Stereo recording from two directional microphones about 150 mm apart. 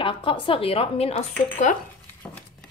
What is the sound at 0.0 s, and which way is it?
A woman's voice, 35° left (ahead or behind).